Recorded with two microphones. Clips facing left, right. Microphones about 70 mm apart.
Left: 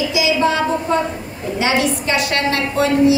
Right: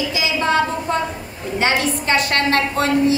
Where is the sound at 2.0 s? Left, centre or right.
Right.